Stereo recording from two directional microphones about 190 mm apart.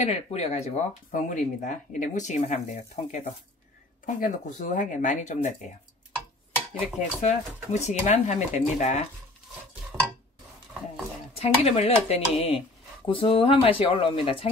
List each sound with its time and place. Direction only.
0.0 s speech: 35° left (ahead or behind)
7.0 s speech: 35° left (ahead or behind)
9.9 s stir: 5° right (ahead or behind)
11.3 s speech: 30° left (ahead or behind)